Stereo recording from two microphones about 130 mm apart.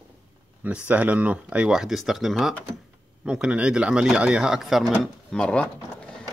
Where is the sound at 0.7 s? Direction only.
10° right (ahead or behind).